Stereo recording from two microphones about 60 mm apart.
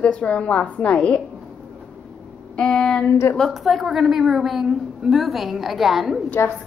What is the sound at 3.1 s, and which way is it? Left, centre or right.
Speech, left.